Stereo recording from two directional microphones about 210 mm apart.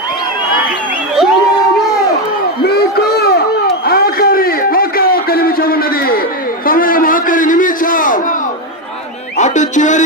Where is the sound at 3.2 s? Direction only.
50° left (ahead or behind).